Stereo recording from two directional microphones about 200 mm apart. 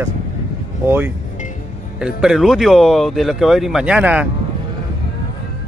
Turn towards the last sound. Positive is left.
turn(degrees=-5)  # may be behind; listen again after turning